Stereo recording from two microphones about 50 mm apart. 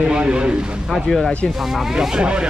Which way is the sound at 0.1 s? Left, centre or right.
Right.